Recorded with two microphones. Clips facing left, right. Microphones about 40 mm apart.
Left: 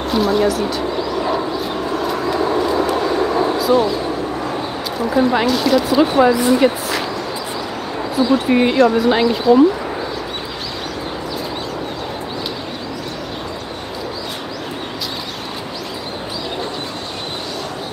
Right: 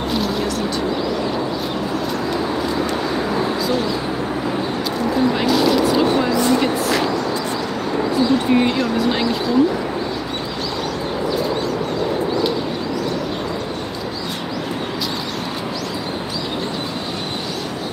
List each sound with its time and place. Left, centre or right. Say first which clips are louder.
0.1 s speech: left 8 dB; centre
2.3 s a sound: left 6 dB; centre
5.1 s speech: left 4 dB; centre
5.5 s speech: even; centre
8.1 s speech: left 2 dB; centre
8.7 s speech: left 6 dB; centre